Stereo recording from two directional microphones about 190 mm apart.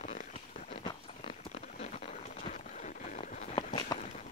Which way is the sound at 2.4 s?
40° left (ahead or behind).